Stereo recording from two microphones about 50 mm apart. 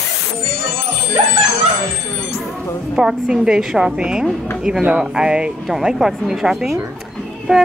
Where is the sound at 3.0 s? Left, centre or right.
Centre.